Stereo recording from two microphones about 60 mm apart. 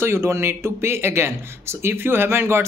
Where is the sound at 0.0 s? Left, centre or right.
Right.